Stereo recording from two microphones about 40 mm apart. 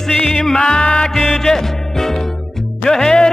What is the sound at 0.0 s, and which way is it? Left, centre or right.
Music, centre.